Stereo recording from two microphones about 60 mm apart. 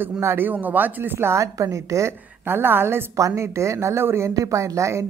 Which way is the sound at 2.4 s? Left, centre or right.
Right.